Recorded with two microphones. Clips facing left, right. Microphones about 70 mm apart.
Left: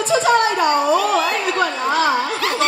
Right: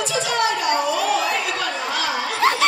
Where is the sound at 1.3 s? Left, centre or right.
Left.